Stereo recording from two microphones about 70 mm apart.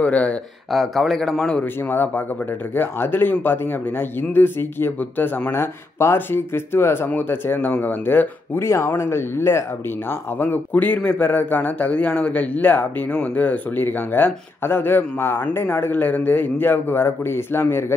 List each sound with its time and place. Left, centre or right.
0.0 s speech: left
0.7 s a man's voice: centre
1.6 s speech: left